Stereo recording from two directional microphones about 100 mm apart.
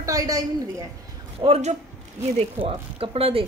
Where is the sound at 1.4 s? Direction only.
80° right.